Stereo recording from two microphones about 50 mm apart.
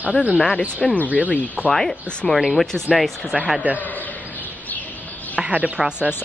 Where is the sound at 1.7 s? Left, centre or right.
Centre.